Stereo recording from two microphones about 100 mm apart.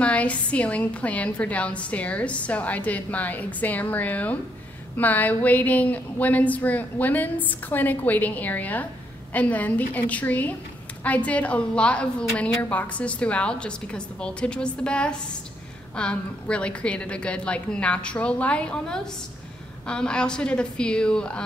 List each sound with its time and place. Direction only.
0.0 s a woman's voice: 15° left (ahead or behind)